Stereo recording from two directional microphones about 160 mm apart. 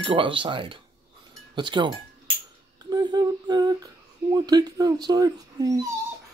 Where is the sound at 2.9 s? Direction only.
25° right (ahead or behind).